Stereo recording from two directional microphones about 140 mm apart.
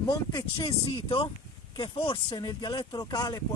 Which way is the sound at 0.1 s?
30° left (ahead or behind).